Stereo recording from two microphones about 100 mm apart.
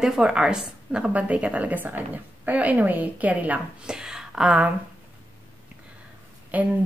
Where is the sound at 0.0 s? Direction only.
5° right (ahead or behind).